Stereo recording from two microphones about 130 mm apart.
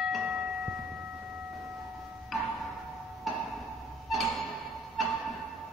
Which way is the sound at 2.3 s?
Centre (ahead or behind).